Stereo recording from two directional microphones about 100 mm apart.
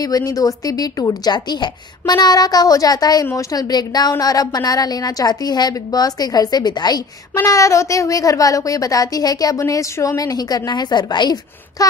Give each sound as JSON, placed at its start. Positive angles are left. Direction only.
{"t": 0.0, "sound": "a woman's voice", "side_deg": 35}
{"t": 7.4, "sound": "a woman's voice", "side_deg": 35}